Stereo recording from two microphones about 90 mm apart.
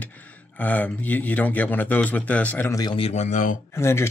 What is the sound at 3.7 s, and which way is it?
Speech, 30° left (ahead or behind).